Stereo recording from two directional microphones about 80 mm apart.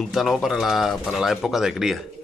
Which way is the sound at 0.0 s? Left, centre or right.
Centre.